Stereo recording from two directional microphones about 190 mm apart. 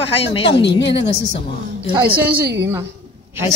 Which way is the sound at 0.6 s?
65° left (ahead or behind).